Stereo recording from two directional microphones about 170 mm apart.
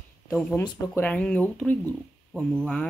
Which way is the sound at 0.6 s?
20° left (ahead or behind).